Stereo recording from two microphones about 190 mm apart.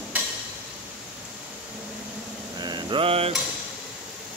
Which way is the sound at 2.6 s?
25° right (ahead or behind).